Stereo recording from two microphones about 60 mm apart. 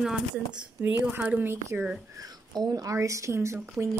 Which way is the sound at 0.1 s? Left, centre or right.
Centre.